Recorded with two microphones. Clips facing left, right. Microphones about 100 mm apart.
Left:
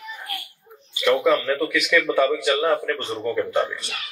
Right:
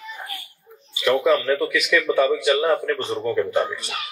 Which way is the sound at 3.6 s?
25° right (ahead or behind).